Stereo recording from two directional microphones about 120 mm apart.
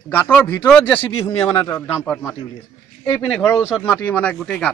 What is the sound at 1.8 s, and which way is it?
A man's voice, 15° left (ahead or behind).